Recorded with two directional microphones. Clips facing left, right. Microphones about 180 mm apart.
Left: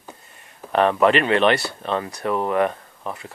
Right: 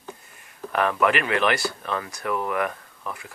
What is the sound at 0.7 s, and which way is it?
Speech, 30° left (ahead or behind).